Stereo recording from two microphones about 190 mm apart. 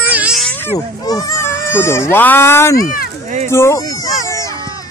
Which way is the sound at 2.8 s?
50° left (ahead or behind).